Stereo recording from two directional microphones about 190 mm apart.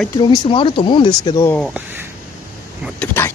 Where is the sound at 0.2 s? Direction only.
25° left (ahead or behind).